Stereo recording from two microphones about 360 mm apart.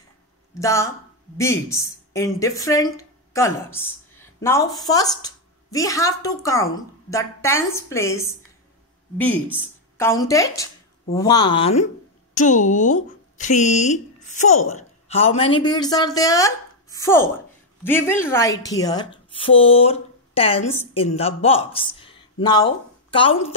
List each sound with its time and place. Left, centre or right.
0.6 s speech: centre